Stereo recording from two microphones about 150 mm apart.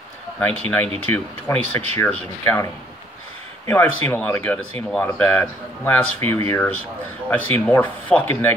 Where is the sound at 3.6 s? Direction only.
15° left (ahead or behind).